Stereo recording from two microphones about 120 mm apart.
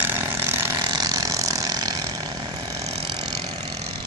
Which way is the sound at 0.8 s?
35° right (ahead or behind).